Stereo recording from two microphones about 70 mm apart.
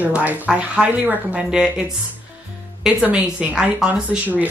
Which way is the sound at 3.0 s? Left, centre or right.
Centre.